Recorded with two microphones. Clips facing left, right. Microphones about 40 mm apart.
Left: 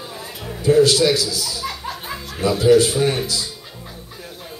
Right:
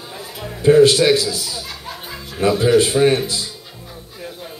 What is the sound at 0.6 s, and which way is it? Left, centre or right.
A man's voice, right.